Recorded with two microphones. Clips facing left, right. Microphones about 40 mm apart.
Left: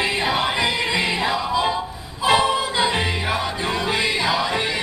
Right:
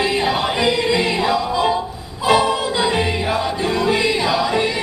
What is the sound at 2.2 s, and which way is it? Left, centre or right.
Choir, left.